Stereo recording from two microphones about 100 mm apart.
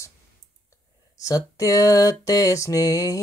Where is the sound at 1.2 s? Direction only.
35° left (ahead or behind).